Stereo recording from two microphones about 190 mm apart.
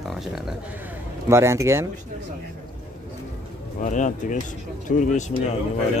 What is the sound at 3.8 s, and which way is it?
Speech, 40° left (ahead or behind).